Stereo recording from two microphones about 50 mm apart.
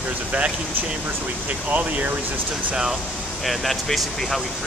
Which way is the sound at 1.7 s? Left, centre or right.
Right.